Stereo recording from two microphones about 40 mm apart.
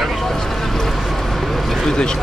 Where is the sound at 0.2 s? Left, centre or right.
Centre.